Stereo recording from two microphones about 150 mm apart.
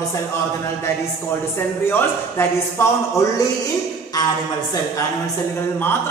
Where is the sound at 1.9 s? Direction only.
15° left (ahead or behind).